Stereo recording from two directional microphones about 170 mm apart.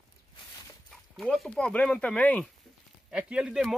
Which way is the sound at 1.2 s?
Centre (ahead or behind).